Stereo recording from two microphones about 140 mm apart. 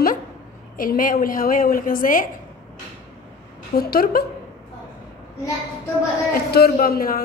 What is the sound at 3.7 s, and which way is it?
Speech, 90° left.